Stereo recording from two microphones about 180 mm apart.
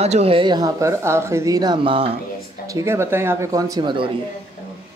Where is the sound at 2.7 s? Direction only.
15° right (ahead or behind).